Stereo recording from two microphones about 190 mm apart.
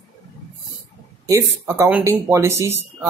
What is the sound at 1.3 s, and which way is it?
Speech, 15° right (ahead or behind).